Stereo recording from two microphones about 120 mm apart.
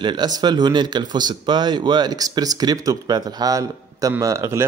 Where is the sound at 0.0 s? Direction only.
40° right (ahead or behind).